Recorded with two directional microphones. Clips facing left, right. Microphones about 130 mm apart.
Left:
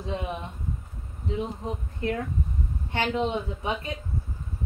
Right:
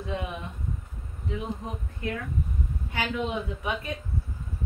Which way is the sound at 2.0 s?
30° left (ahead or behind).